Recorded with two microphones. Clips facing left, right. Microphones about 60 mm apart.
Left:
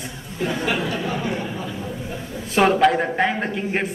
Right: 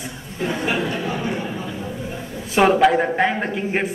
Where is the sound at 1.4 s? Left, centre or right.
Centre.